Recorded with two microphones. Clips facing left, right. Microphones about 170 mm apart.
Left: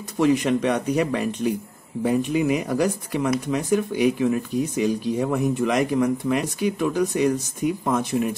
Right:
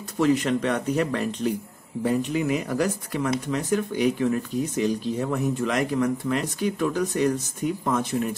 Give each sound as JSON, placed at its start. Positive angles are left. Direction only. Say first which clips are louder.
{"t": 0.2, "sound": "speech", "louder": "left 2 dB", "side_deg": 15}